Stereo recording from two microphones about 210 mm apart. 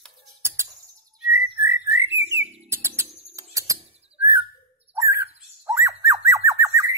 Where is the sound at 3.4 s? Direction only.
15° right (ahead or behind).